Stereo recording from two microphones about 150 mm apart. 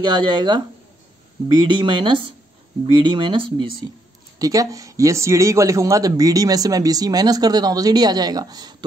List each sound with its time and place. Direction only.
0.0 s speech: 30° right (ahead or behind)